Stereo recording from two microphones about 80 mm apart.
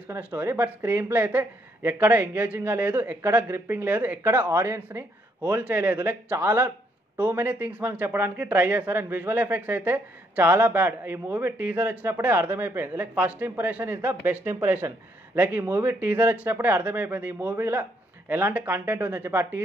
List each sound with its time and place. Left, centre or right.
0.2 s speech: right